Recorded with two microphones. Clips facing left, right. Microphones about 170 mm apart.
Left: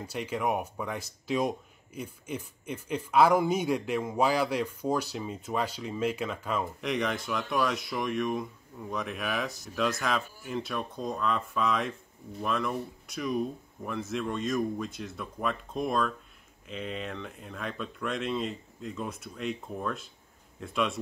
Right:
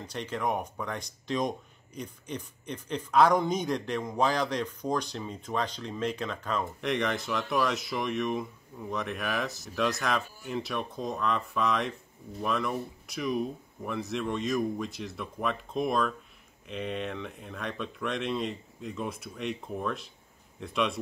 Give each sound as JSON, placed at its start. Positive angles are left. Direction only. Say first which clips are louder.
{"t": 0.0, "sound": "speech", "louder": "left 1 dB", "side_deg": 10}